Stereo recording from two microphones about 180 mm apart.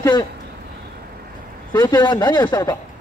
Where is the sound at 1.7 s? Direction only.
20° left (ahead or behind).